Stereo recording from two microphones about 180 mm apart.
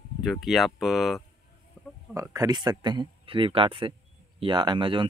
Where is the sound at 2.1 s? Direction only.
20° right (ahead or behind).